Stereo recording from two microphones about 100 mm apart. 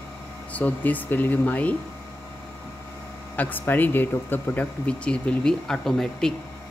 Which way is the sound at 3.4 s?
20° left (ahead or behind).